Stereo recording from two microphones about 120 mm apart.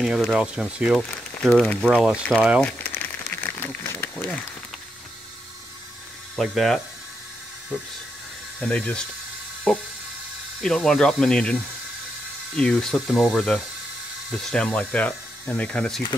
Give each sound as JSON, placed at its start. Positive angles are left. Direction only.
{"t": 0.0, "sound": "speech", "side_deg": 0}
{"t": 0.9, "sound": "speech", "side_deg": 5}
{"t": 2.6, "sound": "crumpling", "side_deg": 15}
{"t": 6.3, "sound": "speech", "side_deg": 0}
{"t": 8.5, "sound": "speech", "side_deg": 10}